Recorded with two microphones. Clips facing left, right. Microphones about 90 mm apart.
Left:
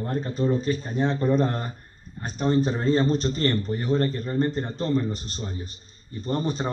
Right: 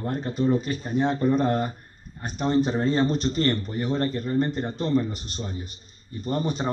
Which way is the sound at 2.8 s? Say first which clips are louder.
Left 1 dB; 35° left (ahead or behind).